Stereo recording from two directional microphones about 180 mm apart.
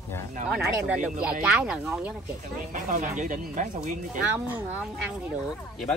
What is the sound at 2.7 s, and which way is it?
Speech, 45° right (ahead or behind).